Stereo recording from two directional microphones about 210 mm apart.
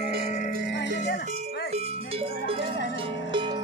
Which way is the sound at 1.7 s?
30° right (ahead or behind).